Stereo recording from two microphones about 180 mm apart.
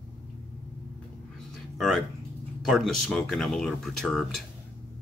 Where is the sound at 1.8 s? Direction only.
Centre (ahead or behind).